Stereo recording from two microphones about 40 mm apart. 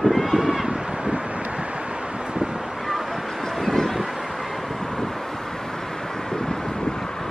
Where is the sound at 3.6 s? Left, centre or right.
Centre.